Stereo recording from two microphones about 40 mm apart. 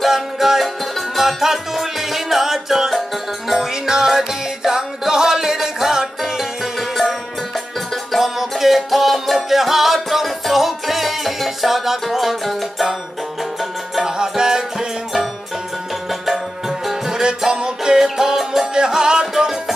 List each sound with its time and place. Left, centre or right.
0.0 s music: centre
14.0 s music: centre
16.1 s music: centre